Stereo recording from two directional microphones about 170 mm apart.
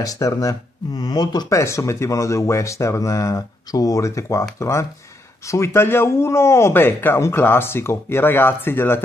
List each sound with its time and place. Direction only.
0.0 s speech: 20° left (ahead or behind)